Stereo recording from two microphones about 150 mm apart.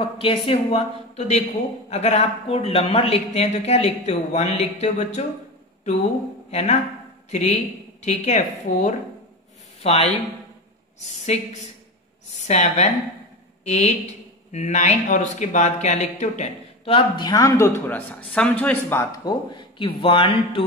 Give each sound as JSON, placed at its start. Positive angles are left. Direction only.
{"t": 0.2, "sound": "speech", "side_deg": 40}
{"t": 6.5, "sound": "a woman's voice", "side_deg": 50}
{"t": 9.8, "sound": "speech", "side_deg": 40}
{"t": 16.9, "sound": "a man's voice", "side_deg": 25}
{"t": 19.2, "sound": "speech", "side_deg": 35}